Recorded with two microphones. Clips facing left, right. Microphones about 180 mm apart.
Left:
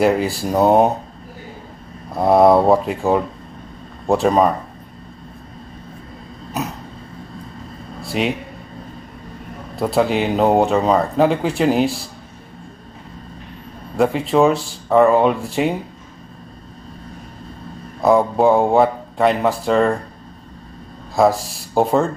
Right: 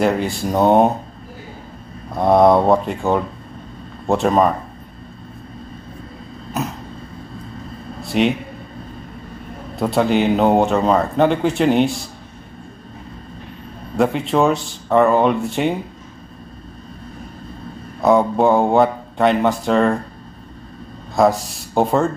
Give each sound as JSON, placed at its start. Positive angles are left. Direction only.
{"t": 0.0, "sound": "speech", "side_deg": 0}
{"t": 2.1, "sound": "speech", "side_deg": 5}
{"t": 8.0, "sound": "a man's voice", "side_deg": 0}
{"t": 9.8, "sound": "speech", "side_deg": 0}
{"t": 13.9, "sound": "speech", "side_deg": 0}
{"t": 18.0, "sound": "speech", "side_deg": 0}
{"t": 21.2, "sound": "speech", "side_deg": 0}